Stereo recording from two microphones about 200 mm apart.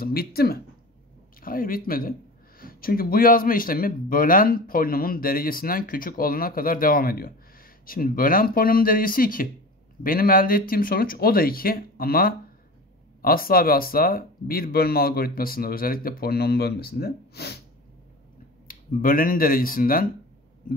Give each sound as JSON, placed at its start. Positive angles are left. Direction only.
{"t": 0.0, "sound": "speech", "side_deg": 50}
{"t": 18.7, "sound": "speech", "side_deg": 45}